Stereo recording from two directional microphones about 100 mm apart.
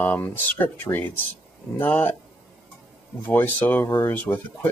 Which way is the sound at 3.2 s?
20° left (ahead or behind).